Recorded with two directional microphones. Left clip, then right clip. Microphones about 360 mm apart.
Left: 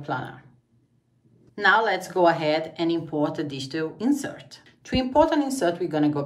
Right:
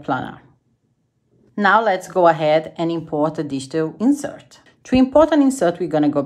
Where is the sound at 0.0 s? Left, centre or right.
Centre.